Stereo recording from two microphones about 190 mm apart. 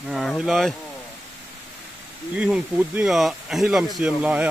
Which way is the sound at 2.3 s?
5° right (ahead or behind).